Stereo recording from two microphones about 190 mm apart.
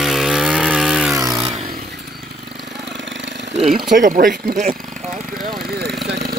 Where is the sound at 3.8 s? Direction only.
45° right (ahead or behind).